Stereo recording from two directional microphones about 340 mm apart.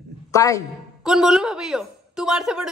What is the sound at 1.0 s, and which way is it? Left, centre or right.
A woman's voice, centre.